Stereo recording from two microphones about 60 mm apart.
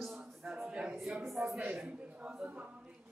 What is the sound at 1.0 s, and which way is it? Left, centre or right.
A man's voice, centre.